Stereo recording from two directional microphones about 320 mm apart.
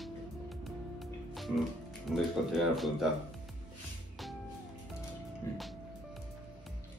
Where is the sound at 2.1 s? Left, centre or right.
Centre.